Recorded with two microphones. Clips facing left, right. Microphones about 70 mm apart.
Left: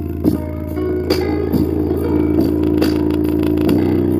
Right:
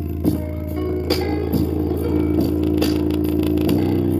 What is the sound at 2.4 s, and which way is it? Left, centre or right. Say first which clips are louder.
Vehicle: left 4 dB; left.